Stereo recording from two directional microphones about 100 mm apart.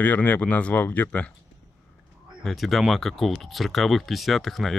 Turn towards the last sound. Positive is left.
turn(degrees=0)  # may be behind; listen again after turning